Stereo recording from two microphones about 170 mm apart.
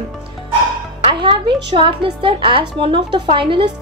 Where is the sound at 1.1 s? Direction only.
30° right (ahead or behind).